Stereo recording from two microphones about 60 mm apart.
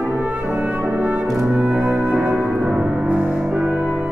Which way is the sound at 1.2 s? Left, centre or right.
Centre.